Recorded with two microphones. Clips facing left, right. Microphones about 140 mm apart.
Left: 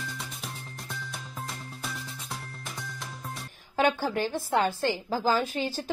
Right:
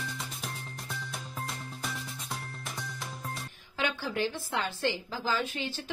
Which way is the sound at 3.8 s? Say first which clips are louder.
Left 6 dB; 45° left (ahead or behind).